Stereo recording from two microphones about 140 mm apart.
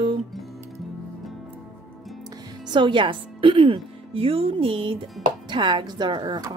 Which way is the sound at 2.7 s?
35° right (ahead or behind).